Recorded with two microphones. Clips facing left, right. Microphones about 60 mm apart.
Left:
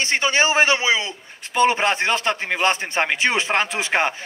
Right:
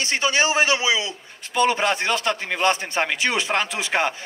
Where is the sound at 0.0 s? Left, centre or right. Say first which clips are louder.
Left 2 dB; left.